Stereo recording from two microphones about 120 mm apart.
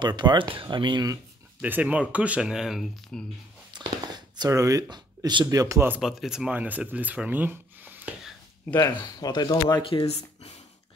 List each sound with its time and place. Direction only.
0.0 s speech: 40° right (ahead or behind)
1.6 s speech: 10° right (ahead or behind)
3.7 s a sound: 35° right (ahead or behind)
5.9 s speech: centre (ahead or behind)
8.7 s speech: 30° left (ahead or behind); by 10.6 s 60° left (ahead or behind)